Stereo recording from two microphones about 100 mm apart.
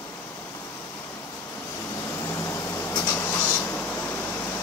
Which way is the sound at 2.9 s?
20° left (ahead or behind).